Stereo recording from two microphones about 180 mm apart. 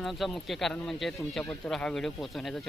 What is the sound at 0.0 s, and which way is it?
Speech, centre (ahead or behind).